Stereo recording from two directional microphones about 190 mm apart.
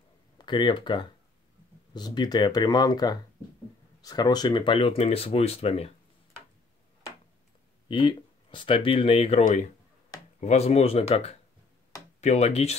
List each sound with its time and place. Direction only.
0.4 s speech: 25° left (ahead or behind)
7.9 s speech: 25° left (ahead or behind)